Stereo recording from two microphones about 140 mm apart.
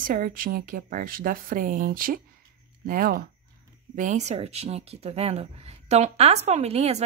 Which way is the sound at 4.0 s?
60° right (ahead or behind).